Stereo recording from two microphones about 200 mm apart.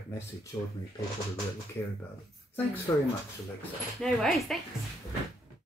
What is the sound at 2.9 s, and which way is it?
Speech, 20° left (ahead or behind).